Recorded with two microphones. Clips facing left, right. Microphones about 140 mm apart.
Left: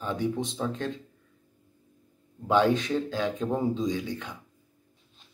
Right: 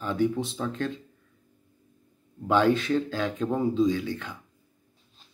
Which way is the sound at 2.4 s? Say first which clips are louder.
Right 1 dB; 20° left (ahead or behind).